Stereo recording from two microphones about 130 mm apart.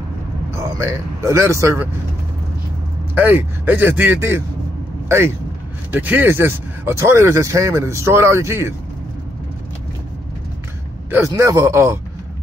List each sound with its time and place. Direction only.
0.6 s speech: 20° right (ahead or behind)
3.2 s speech: 15° right (ahead or behind)
11.1 s speech: 20° right (ahead or behind)